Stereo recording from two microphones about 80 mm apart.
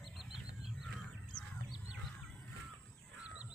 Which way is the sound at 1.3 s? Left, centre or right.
Centre.